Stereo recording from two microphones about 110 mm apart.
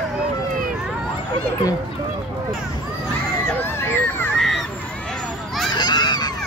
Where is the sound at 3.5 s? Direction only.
20° left (ahead or behind).